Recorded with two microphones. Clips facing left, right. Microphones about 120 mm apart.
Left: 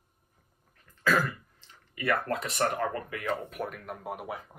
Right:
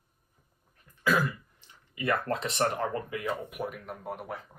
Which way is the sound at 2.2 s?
30° right (ahead or behind).